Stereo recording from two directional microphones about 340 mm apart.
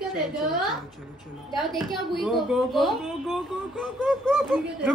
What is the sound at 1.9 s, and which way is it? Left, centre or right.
A woman's voice, centre.